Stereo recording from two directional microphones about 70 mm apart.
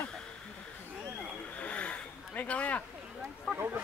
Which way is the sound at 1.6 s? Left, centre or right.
Centre.